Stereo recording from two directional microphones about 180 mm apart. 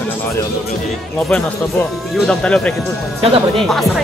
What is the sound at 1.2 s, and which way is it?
Speech, 5° left (ahead or behind).